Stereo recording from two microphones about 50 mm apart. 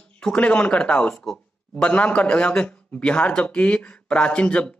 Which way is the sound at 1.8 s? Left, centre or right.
Left.